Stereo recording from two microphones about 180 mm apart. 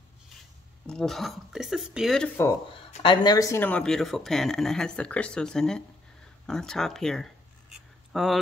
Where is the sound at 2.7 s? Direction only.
30° left (ahead or behind).